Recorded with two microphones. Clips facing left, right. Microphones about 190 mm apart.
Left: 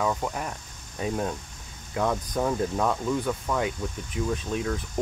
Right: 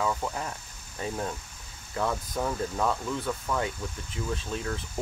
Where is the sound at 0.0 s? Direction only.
10° left (ahead or behind).